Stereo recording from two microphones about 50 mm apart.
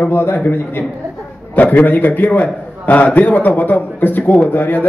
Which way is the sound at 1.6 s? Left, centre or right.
Left.